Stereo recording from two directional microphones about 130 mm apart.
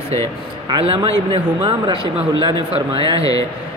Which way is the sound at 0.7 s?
45° right (ahead or behind).